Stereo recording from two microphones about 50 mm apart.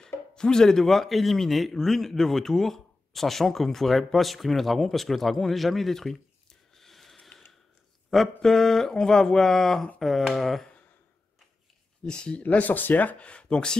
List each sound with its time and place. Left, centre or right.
0.0 s speech: centre
6.7 s a sound: centre
8.4 s speech: centre
12.0 s speech: centre
12.4 s speech: left; by 13.7 s centre